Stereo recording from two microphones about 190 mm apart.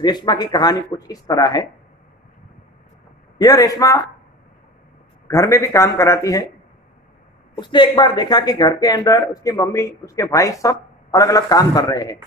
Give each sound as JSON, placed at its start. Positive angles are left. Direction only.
{"t": 0.0, "sound": "speech", "side_deg": 20}
{"t": 3.3, "sound": "speech", "side_deg": 20}
{"t": 5.3, "sound": "speech", "side_deg": 15}
{"t": 7.5, "sound": "speech", "side_deg": 25}